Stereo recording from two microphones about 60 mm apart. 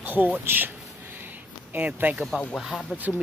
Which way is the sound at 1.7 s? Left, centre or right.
Right.